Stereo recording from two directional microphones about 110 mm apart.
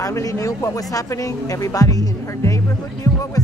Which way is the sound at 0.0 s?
30° left (ahead or behind).